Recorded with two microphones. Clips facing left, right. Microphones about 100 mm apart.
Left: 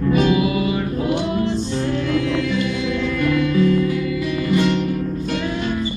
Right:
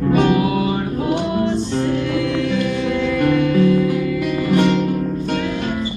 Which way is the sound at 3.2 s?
55° right (ahead or behind).